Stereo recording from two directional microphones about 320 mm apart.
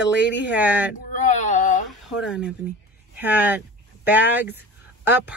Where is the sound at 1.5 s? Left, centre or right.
Left.